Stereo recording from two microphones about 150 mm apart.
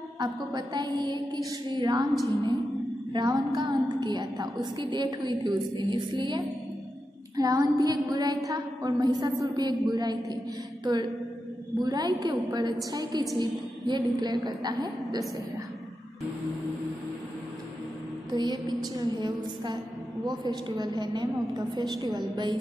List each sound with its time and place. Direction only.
0.2 s a woman's voice: 30° right (ahead or behind)
3.1 s a woman's voice: 30° right (ahead or behind)
18.3 s a woman's voice: 25° right (ahead or behind)